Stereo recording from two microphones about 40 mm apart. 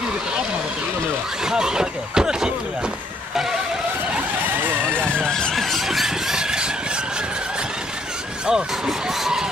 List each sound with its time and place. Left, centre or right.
1.4 s a sound: centre
4.9 s vehicle: left
5.5 s squeal: centre
5.9 s squeal: centre
8.5 s vehicle: centre